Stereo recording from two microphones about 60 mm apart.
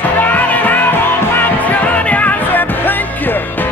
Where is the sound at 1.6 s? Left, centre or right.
Left.